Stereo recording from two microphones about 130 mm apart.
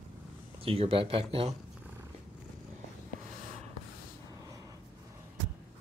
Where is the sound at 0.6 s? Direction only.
45° right (ahead or behind).